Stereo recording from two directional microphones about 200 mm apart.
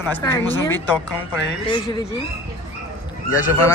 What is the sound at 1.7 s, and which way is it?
Speech, 25° left (ahead or behind).